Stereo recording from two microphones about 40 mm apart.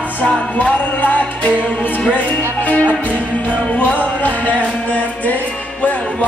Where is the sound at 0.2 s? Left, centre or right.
Left.